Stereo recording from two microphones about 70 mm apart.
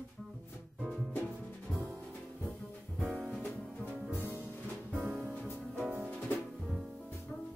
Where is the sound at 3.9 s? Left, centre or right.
Centre.